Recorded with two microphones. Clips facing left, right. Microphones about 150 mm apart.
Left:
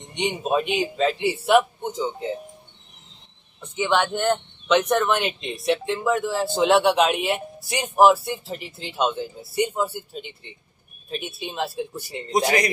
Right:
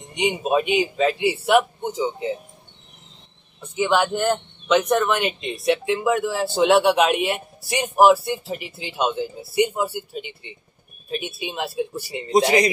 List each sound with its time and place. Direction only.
0.1 s speech: 5° right (ahead or behind)
3.7 s speech: 5° right (ahead or behind)
12.4 s a man's voice: 25° right (ahead or behind)